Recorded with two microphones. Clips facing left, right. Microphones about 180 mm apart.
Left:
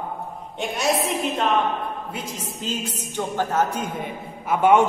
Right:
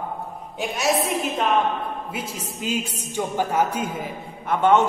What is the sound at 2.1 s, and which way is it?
A man's voice, 10° right (ahead or behind).